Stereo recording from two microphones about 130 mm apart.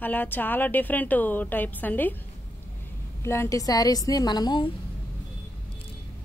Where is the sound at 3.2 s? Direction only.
20° left (ahead or behind).